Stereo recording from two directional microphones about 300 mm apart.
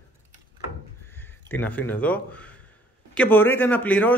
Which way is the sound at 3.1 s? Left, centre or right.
Centre.